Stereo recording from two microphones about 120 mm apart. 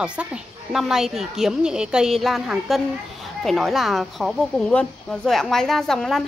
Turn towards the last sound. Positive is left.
turn(degrees=5)  # may be behind; listen again after turning